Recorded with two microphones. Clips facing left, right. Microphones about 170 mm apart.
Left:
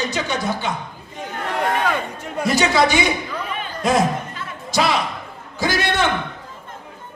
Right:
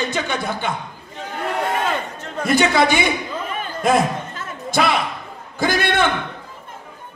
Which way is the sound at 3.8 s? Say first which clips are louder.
Right 1 dB; 55° right (ahead or behind).